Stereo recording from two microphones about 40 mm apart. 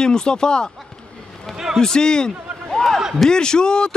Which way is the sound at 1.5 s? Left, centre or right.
Centre.